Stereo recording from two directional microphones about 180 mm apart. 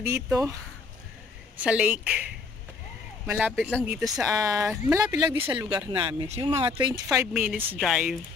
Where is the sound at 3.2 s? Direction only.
5° right (ahead or behind); by 6.5 s 30° right (ahead or behind).